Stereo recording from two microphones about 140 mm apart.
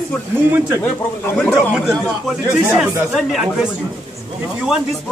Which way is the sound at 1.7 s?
Centre (ahead or behind).